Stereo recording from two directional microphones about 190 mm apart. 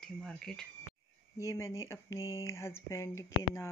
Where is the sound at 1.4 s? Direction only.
15° left (ahead or behind).